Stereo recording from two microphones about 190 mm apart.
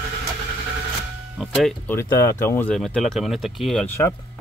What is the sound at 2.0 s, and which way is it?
Speech, 15° left (ahead or behind).